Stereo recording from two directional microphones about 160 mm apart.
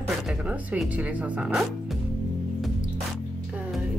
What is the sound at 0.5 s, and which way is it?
Speech, 10° right (ahead or behind).